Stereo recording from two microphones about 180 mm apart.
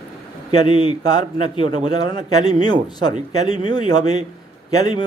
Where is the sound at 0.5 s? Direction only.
25° left (ahead or behind).